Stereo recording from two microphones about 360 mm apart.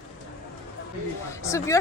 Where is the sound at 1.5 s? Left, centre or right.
Centre.